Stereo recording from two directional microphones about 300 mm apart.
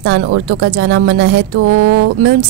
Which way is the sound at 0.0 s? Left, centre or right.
Right.